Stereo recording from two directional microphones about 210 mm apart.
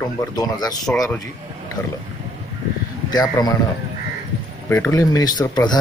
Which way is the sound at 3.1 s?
20° left (ahead or behind).